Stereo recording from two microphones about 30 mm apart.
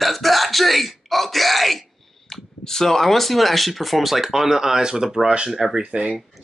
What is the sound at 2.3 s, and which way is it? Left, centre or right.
Speech, centre.